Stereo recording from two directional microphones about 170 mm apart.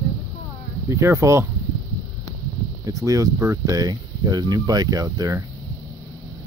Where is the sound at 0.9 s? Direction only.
15° right (ahead or behind).